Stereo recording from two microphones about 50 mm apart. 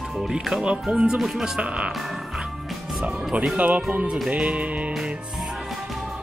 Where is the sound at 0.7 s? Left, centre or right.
Centre.